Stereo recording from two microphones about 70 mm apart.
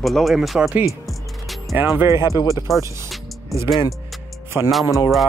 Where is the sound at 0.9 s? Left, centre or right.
Centre.